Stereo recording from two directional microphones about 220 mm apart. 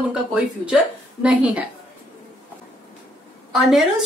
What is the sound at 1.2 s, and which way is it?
Speech, 5° right (ahead or behind).